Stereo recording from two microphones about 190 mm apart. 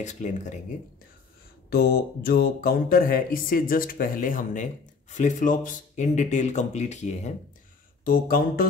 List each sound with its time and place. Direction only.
0.0 s speech: 40° left (ahead or behind)
1.7 s speech: 55° left (ahead or behind); by 7.3 s 35° left (ahead or behind)
8.0 s speech: 50° left (ahead or behind)